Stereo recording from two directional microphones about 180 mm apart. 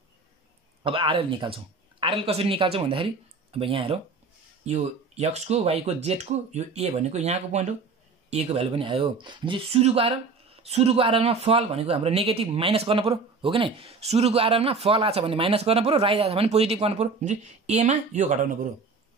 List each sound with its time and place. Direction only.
0.8 s speech: 30° right (ahead or behind); by 18.7 s 45° right (ahead or behind)